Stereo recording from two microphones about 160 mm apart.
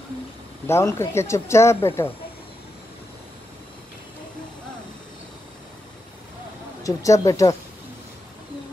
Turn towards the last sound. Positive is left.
turn(degrees=20)  # may be behind; listen again after turning